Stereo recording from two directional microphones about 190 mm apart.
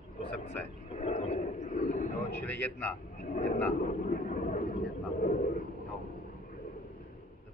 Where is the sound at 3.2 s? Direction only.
50° left (ahead or behind).